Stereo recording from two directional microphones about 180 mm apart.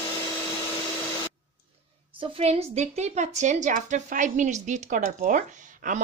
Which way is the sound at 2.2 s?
35° right (ahead or behind).